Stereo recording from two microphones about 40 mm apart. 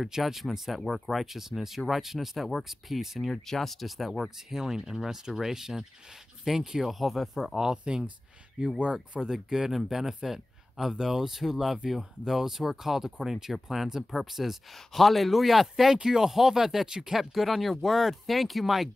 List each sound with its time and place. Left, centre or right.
0.1 s speech: centre
3.3 s speech: centre
7.5 s speech: right; by 18.9 s centre